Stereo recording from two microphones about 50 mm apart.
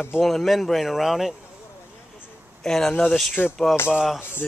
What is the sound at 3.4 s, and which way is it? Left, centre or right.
Speech, left.